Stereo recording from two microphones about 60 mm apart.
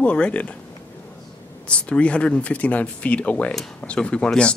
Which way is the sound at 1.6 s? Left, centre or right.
Centre.